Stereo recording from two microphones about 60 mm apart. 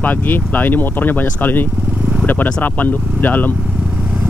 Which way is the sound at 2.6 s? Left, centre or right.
Left.